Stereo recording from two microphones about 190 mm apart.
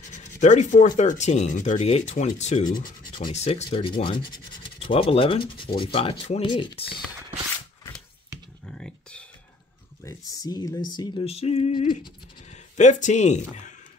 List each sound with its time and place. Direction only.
0.4 s speech: 40° left (ahead or behind)
8.6 s a sound: 5° left (ahead or behind)
10.0 s speech: 20° left (ahead or behind); by 13.7 s 40° left (ahead or behind)